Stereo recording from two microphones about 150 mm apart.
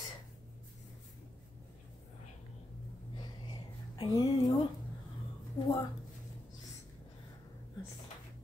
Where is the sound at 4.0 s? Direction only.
25° left (ahead or behind).